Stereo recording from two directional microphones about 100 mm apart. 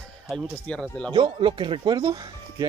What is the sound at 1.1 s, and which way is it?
Speech, 55° right (ahead or behind).